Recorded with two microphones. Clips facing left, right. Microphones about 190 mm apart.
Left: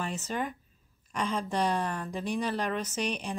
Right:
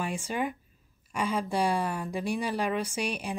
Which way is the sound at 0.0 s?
10° right (ahead or behind).